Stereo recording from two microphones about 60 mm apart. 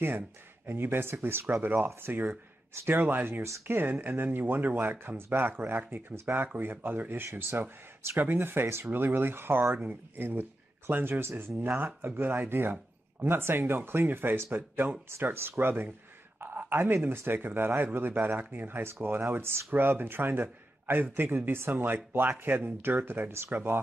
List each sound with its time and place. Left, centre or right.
0.7 s speech: right